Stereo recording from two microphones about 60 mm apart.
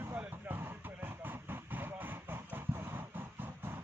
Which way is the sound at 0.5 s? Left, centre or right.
Right.